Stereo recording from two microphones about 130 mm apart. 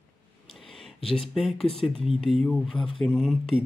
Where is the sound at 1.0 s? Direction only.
50° left (ahead or behind).